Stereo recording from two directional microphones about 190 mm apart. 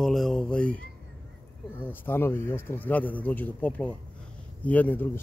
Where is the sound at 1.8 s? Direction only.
10° left (ahead or behind).